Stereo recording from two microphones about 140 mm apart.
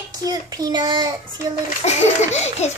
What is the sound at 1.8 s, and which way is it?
Speech, 50° left (ahead or behind).